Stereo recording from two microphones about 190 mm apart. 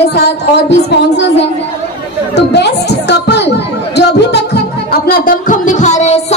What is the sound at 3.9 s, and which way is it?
Music, 60° left (ahead or behind).